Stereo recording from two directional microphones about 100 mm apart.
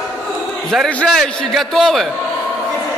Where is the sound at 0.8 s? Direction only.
10° left (ahead or behind).